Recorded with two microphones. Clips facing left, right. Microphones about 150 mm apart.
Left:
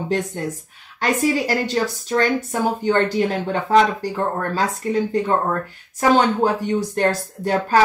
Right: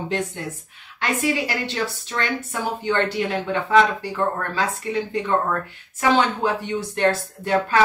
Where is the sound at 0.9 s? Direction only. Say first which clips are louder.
Left 4 dB; 40° left (ahead or behind).